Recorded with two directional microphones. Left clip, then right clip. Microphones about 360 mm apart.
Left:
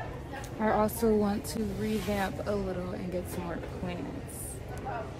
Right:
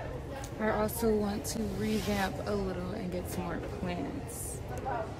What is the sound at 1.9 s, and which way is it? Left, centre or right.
A woman's voice, centre.